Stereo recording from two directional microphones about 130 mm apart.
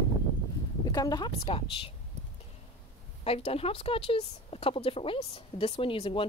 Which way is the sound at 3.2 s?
50° left (ahead or behind).